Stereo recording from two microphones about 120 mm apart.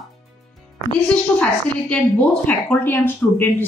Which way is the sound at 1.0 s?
10° left (ahead or behind).